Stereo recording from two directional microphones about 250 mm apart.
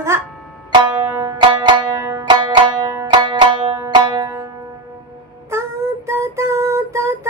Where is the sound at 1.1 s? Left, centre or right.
Centre.